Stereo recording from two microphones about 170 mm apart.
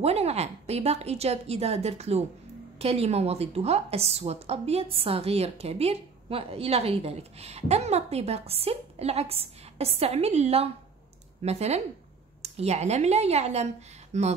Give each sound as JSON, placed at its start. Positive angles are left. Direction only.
{"t": 0.0, "sound": "a woman's voice", "side_deg": -40}